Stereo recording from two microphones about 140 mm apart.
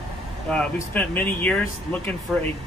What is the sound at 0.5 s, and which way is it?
Speech, 10° left (ahead or behind).